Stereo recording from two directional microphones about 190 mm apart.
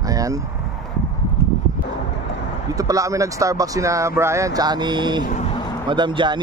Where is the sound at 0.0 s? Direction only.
20° right (ahead or behind).